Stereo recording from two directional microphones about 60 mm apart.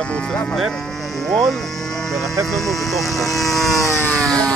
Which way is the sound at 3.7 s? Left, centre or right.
Left.